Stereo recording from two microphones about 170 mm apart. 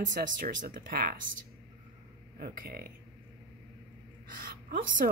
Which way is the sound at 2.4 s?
60° right (ahead or behind).